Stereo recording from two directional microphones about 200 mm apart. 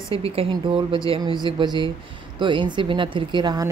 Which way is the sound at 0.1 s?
30° right (ahead or behind).